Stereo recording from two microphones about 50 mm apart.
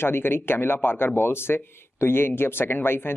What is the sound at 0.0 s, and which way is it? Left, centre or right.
Speech, left.